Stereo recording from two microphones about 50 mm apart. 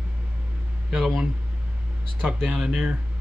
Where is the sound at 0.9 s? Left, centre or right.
Centre.